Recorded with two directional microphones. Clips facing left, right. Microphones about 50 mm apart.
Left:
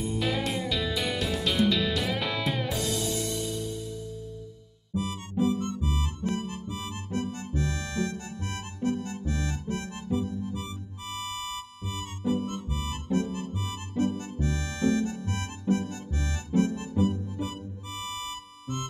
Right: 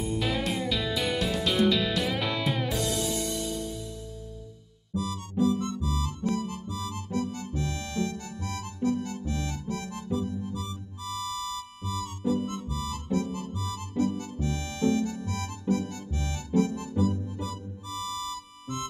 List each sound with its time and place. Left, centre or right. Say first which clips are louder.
0.0 s music: even; centre
4.9 s music: even; left